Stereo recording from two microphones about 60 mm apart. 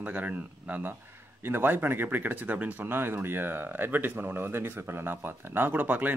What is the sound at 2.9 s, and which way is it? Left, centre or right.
Speech, right.